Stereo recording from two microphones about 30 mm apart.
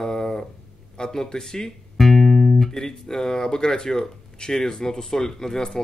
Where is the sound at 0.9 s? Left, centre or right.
Left.